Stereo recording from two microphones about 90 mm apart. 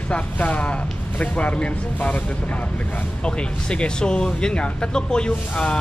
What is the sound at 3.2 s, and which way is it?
Speech, 10° left (ahead or behind).